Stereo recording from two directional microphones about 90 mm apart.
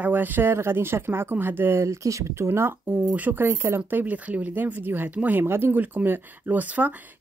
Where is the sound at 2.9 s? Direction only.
15° right (ahead or behind).